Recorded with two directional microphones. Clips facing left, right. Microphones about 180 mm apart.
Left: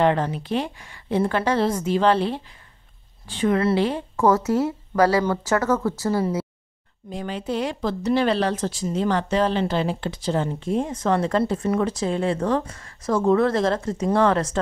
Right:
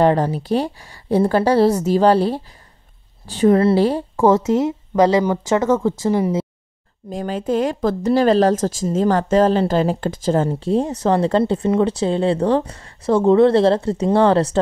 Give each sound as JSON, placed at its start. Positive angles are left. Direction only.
{"t": 0.0, "sound": "speech", "side_deg": -40}
{"t": 4.3, "sound": "speech", "side_deg": -20}
{"t": 7.1, "sound": "speech", "side_deg": -45}